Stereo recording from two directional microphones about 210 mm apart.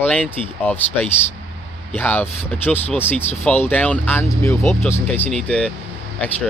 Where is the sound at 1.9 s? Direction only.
10° left (ahead or behind).